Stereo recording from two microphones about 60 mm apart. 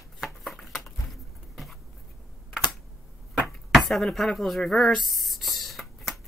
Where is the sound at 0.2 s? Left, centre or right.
Centre.